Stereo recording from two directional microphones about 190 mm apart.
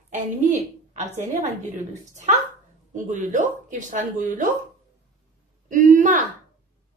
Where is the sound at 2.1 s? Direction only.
40° right (ahead or behind).